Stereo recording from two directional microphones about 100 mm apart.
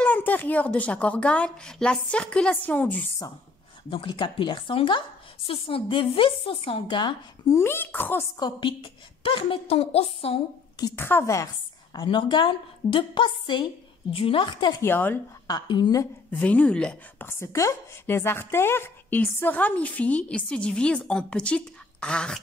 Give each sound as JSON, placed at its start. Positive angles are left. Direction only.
{"t": 0.0, "sound": "a woman's voice", "side_deg": 15}
{"t": 3.9, "sound": "a woman's voice", "side_deg": 55}
{"t": 7.4, "sound": "a woman's voice", "side_deg": 25}
{"t": 8.4, "sound": "a woman's voice", "side_deg": 55}
{"t": 11.0, "sound": "a woman's voice", "side_deg": 25}
{"t": 12.1, "sound": "a woman's voice", "side_deg": 55}
{"t": 14.8, "sound": "a woman's voice", "side_deg": 20}
{"t": 15.4, "sound": "a woman's voice", "side_deg": 45}
{"t": 16.3, "sound": "a woman's voice", "side_deg": 15}
{"t": 17.3, "sound": "a woman's voice", "side_deg": 30}